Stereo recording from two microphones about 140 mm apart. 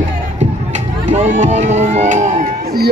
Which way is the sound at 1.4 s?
55° right (ahead or behind).